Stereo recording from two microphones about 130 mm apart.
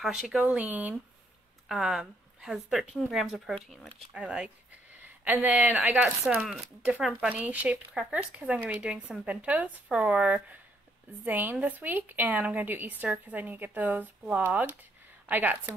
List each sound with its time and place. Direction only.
0.0 s speech: centre (ahead or behind)
1.7 s a woman's voice: centre (ahead or behind)